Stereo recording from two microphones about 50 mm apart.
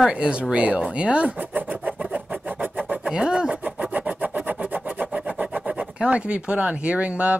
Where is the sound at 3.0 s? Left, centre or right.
Centre.